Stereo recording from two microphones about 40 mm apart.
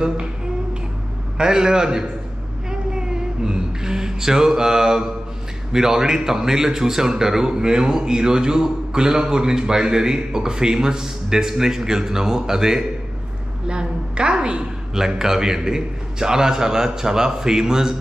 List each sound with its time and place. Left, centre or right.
1.4 s a man's voice: centre
2.7 s music: centre
5.7 s a man's voice: centre
13.7 s a woman's voice: right